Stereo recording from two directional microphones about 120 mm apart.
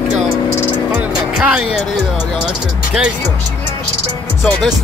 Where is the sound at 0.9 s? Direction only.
10° right (ahead or behind).